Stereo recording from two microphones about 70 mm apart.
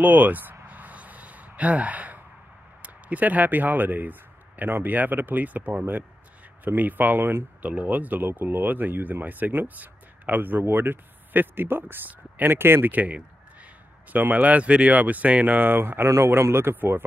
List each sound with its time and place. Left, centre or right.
0.0 s speech: right
0.7 s gasp: right
2.8 s speech: right
7.6 s speech: right